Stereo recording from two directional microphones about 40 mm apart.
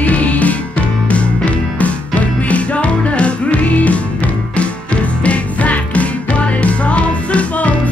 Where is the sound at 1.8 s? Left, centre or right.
Left.